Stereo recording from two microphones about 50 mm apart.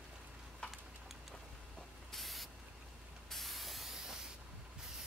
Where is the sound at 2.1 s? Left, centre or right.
Centre.